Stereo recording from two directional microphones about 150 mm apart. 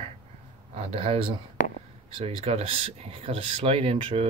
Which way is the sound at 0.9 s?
40° right (ahead or behind).